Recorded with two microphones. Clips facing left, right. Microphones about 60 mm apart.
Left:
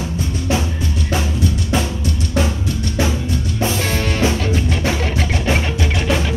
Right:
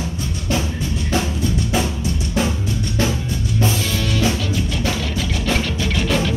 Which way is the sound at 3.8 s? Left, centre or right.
Left.